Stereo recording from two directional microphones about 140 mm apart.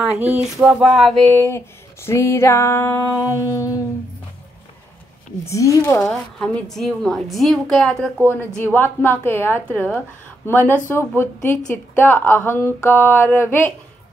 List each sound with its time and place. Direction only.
0.6 s a woman's voice: 5° right (ahead or behind)
1.3 s female singing: 15° left (ahead or behind)
5.4 s female singing: 20° left (ahead or behind)
5.9 s a woman's voice: 5° left (ahead or behind)